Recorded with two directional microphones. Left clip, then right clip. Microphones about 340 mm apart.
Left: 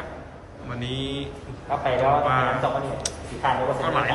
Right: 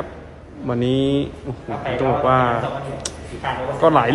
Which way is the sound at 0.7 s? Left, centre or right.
Centre.